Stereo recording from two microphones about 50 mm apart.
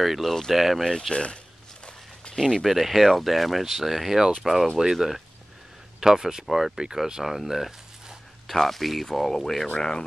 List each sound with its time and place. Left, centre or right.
0.0 s speech: centre
0.8 s speech: centre
1.9 s walk: centre
2.4 s speech: centre